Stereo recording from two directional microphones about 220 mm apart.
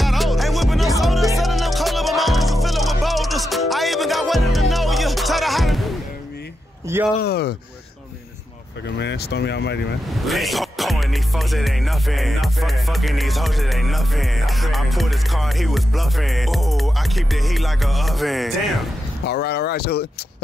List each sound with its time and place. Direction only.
0.0 s music: centre (ahead or behind)
7.2 s speech: 45° left (ahead or behind)
8.8 s speech: 50° left (ahead or behind)
10.2 s music: centre (ahead or behind)
19.2 s speech: 50° left (ahead or behind)